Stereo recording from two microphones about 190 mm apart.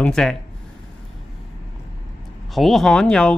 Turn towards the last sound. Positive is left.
turn(degrees=5)  # may be behind; listen again after turning